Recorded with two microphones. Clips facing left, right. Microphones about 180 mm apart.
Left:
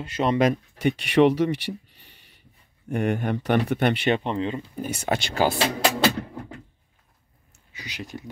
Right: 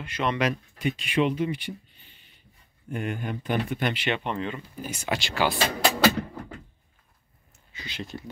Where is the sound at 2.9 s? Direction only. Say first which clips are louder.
Left 7 dB; 70° left (ahead or behind).